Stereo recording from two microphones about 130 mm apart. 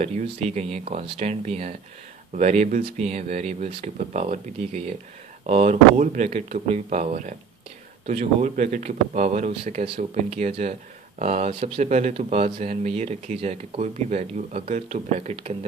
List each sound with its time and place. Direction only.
0.0 s speech: 60° right (ahead or behind)
9.8 s speech: 45° right (ahead or behind)
10.1 s speech: 55° right (ahead or behind)
12.6 s speech: 55° right (ahead or behind)